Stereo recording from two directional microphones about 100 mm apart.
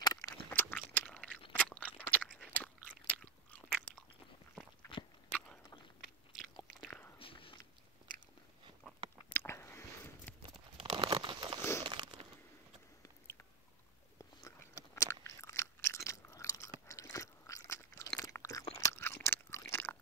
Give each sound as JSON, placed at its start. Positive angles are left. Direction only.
{"t": 0.0, "sound": "a sound", "side_deg": 40}
{"t": 0.5, "sound": "a sound", "side_deg": 20}
{"t": 1.5, "sound": "crunch", "side_deg": 15}
{"t": 6.3, "sound": "biting", "side_deg": -5}
{"t": 7.2, "sound": "biting", "side_deg": 65}
{"t": 9.3, "sound": "biting", "side_deg": 25}
{"t": 10.8, "sound": "crumpling", "side_deg": -65}
{"t": 13.0, "sound": "biting", "side_deg": 25}
{"t": 14.1, "sound": "biting", "side_deg": 35}
{"t": 15.2, "sound": "chewing", "side_deg": 30}
{"t": 16.8, "sound": "crunch", "side_deg": 35}